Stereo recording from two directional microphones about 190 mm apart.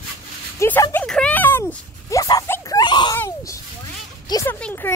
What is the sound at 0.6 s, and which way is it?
A child's voice, 15° left (ahead or behind).